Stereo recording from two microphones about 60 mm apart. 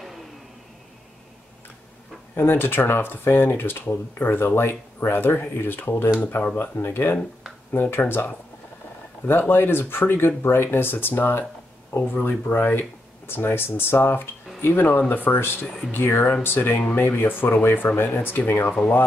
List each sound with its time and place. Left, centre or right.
2.6 s speech: left
9.2 s speech: left